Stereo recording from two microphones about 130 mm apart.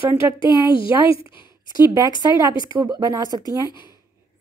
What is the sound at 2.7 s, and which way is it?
Speech, 30° right (ahead or behind).